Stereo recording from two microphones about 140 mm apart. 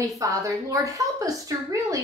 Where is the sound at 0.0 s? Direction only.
25° right (ahead or behind).